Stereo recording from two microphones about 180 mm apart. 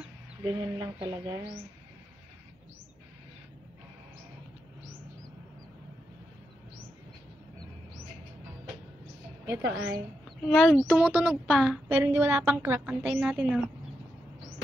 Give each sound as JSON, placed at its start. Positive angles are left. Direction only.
{"t": 0.5, "sound": "speech", "side_deg": -25}
{"t": 1.0, "sound": "a woman's voice", "side_deg": -15}
{"t": 9.5, "sound": "a woman's voice", "side_deg": -15}
{"t": 10.2, "sound": "speech", "side_deg": 0}
{"t": 11.9, "sound": "a woman's voice", "side_deg": -15}